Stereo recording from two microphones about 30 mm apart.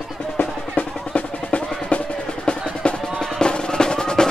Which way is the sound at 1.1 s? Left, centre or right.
Left.